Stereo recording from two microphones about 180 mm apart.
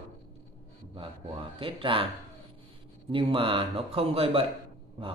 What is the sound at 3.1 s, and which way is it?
Speech, 30° right (ahead or behind).